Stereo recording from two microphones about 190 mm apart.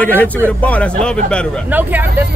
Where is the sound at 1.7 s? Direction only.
10° right (ahead or behind).